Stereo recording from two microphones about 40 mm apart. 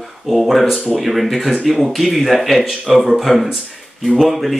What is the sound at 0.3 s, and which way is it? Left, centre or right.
Speech, centre.